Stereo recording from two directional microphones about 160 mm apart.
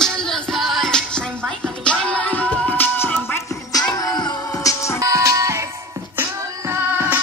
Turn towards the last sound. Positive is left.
turn(degrees=-15)  # may be behind; listen again after turning